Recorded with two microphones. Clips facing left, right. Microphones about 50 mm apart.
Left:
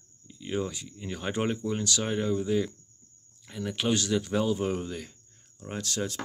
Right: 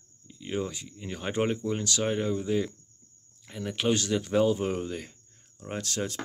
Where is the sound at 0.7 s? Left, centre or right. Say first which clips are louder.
Left 1 dB; centre.